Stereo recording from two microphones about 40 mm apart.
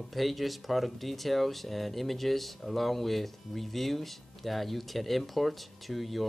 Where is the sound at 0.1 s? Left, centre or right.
Centre.